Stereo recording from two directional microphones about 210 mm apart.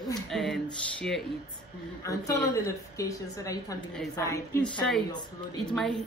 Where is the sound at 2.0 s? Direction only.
15° left (ahead or behind).